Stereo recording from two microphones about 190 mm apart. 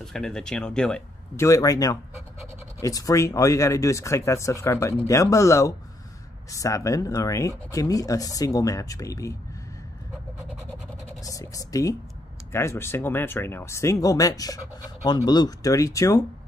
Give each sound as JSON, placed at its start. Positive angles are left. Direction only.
{"t": 0.0, "sound": "speech", "side_deg": 0}
{"t": 1.3, "sound": "speech", "side_deg": 15}
{"t": 11.2, "sound": "speech", "side_deg": 15}